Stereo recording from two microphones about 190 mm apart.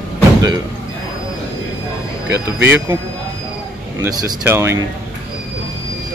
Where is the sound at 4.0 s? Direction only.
15° right (ahead or behind).